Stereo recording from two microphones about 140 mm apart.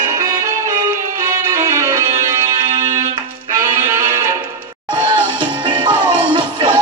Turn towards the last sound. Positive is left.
turn(degrees=-35)  # may be behind; listen again after turning